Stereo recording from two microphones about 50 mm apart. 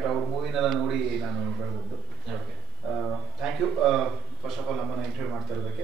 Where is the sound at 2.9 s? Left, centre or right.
Centre.